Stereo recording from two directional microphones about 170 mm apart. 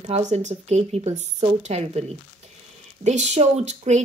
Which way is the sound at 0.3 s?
45° right (ahead or behind).